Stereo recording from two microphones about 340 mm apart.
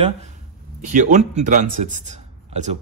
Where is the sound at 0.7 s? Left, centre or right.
Right.